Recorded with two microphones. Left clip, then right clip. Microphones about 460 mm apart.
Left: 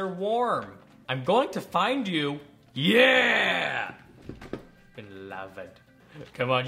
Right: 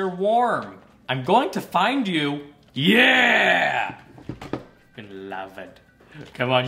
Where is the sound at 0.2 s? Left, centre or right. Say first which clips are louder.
Right 6 dB; left.